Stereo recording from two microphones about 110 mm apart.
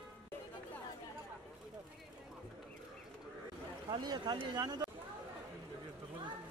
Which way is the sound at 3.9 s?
40° right (ahead or behind).